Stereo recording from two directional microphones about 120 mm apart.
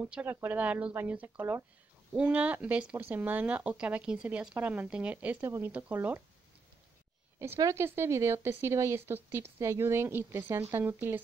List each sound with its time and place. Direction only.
0.1 s speech: 15° right (ahead or behind)
7.3 s a woman's voice: 20° right (ahead or behind)